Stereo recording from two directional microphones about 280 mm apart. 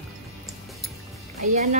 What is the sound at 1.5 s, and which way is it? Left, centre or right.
Speech, right.